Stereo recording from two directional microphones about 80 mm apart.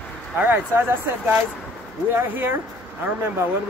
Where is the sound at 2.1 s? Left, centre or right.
Right.